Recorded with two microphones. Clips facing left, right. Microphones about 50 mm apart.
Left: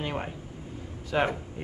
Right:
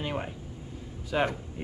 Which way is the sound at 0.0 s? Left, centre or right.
Centre.